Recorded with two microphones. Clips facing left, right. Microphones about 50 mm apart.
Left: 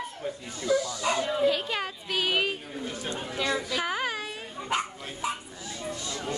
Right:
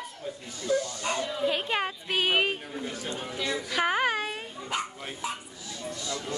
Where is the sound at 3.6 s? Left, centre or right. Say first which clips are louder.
Right 3 dB; right.